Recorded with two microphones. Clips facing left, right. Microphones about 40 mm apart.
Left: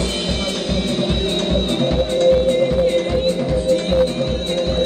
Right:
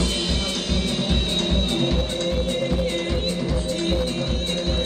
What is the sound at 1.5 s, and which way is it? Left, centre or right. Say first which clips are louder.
Music: left 6 dB; centre.